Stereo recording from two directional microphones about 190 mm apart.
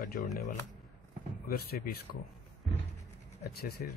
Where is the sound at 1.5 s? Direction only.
55° left (ahead or behind).